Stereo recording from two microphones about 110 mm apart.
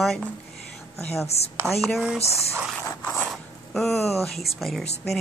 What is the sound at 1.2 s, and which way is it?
Speech, 75° left (ahead or behind).